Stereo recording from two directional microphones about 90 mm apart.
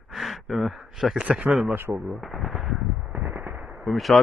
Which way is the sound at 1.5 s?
5° right (ahead or behind).